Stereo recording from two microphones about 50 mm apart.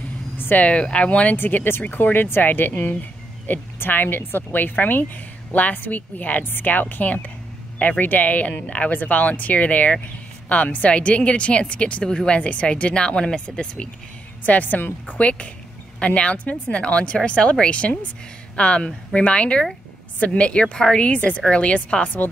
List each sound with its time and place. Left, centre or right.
0.4 s vehicle: left
0.7 s speech: left
1.3 s speech: left; by 13.8 s centre
14.4 s speech: left